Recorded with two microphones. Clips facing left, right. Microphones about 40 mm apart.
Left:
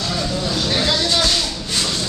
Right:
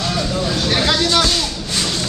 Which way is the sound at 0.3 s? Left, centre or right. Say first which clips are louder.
Right 1 dB; centre.